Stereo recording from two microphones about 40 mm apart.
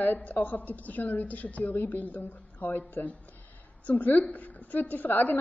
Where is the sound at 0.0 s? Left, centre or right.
Left.